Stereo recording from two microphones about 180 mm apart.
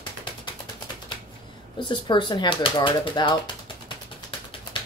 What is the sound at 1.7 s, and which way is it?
Speech, 25° left (ahead or behind).